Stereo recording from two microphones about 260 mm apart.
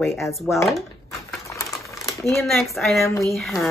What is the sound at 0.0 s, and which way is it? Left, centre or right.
Speech, centre.